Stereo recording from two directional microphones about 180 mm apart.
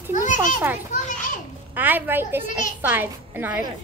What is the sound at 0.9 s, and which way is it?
Children playing, 45° left (ahead or behind).